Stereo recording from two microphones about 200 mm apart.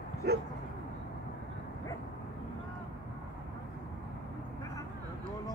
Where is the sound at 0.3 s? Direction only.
55° right (ahead or behind).